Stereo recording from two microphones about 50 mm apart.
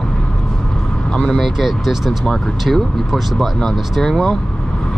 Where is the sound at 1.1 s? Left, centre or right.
Centre.